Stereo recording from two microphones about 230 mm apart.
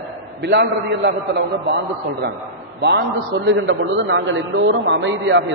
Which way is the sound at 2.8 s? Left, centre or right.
Right.